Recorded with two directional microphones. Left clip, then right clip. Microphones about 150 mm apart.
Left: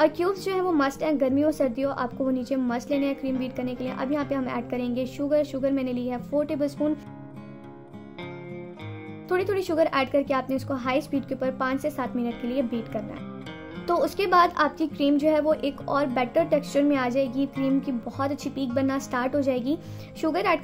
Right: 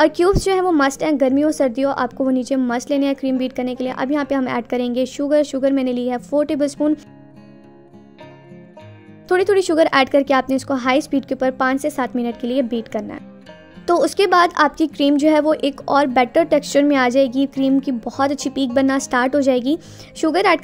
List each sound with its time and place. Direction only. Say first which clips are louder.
0.0 s a woman's voice: right 8 dB; 50° right (ahead or behind)
9.3 s a woman's voice: right 10 dB; 50° right (ahead or behind)